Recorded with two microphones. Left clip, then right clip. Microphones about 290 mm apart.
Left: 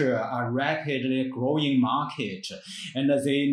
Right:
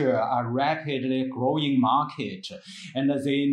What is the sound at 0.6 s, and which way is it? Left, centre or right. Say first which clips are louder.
Speech: right 1 dB; centre.